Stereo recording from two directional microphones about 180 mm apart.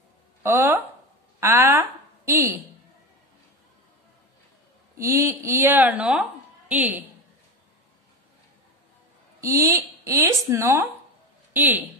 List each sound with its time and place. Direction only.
0.4 s a woman's voice: 15° right (ahead or behind)
4.9 s speech: 15° right (ahead or behind)
9.4 s speech: 20° right (ahead or behind)